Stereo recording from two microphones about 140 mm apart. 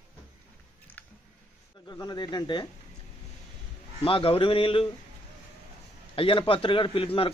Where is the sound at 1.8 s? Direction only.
30° left (ahead or behind).